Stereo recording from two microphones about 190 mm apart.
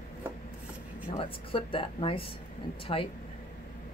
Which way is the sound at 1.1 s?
30° left (ahead or behind).